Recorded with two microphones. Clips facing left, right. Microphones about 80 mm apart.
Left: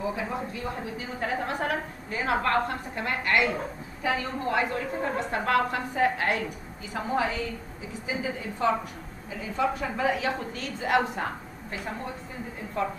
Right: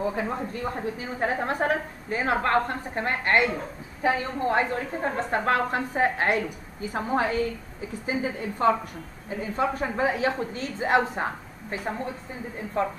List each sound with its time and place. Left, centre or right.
0.0 s speech: right
1.2 s a woman's voice: right
12.8 s a woman's voice: right